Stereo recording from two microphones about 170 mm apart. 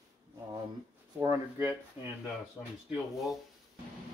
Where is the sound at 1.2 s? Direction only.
15° right (ahead or behind).